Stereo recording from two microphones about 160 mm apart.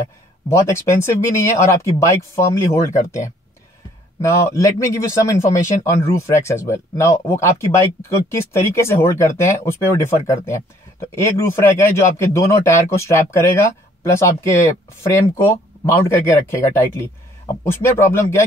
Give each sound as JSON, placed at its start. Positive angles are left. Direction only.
{"t": 0.5, "sound": "speech", "side_deg": 15}
{"t": 4.2, "sound": "a man's voice", "side_deg": 20}